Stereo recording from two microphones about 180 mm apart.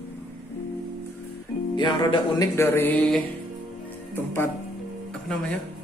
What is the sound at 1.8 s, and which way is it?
Music, 25° left (ahead or behind).